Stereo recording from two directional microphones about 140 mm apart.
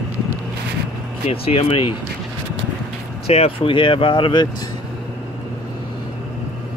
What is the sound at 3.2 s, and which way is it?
Speech, 45° left (ahead or behind).